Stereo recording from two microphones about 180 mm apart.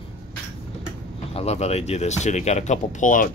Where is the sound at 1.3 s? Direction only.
35° left (ahead or behind).